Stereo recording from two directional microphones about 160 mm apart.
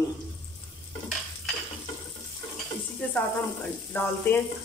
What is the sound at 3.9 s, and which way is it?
Speech, 10° left (ahead or behind).